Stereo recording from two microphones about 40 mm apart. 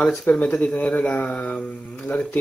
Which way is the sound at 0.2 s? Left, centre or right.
Left.